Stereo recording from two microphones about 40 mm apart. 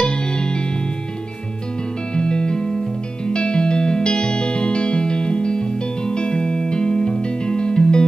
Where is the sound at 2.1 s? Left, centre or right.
Left.